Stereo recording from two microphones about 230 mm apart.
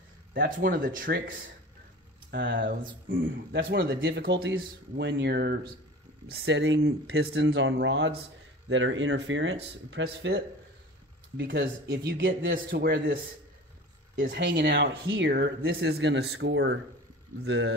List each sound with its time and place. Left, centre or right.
0.3 s speech: right
2.3 s speech: right